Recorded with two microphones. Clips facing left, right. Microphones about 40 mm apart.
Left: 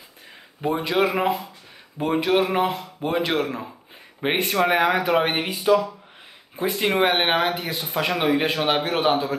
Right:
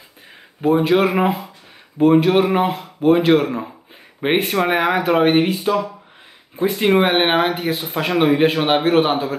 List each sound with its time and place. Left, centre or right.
0.6 s speech: centre